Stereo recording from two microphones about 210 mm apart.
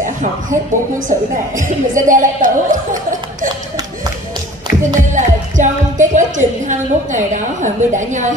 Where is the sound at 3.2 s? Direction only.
20° right (ahead or behind).